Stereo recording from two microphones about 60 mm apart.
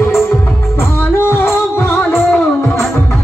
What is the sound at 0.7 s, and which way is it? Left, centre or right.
Music, left.